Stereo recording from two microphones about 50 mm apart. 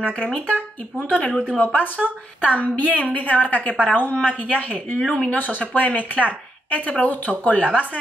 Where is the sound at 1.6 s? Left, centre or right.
Left.